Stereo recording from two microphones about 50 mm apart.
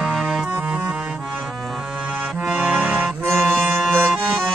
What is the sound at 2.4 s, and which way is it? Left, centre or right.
Accordion, centre.